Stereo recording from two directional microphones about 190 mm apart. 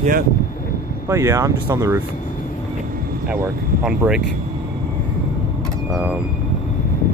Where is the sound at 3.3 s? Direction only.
5° right (ahead or behind).